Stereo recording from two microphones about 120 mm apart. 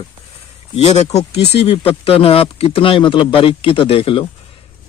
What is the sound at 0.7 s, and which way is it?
Speech, 65° left (ahead or behind).